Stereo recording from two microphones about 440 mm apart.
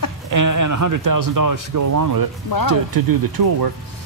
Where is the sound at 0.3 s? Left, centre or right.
Right.